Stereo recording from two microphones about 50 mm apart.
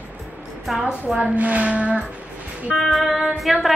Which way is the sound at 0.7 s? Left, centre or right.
Centre.